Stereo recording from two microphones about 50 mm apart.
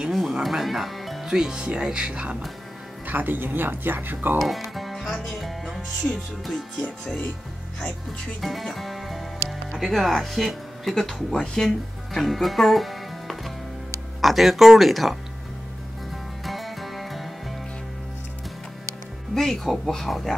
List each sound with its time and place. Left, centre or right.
0.1 s music: centre
1.3 s speech: centre
3.1 s speech: right
4.7 s music: centre
5.2 s speech: centre
6.0 s speech: left
8.4 s music: centre
9.8 s speech: centre
16.4 s music: centre
19.3 s speech: centre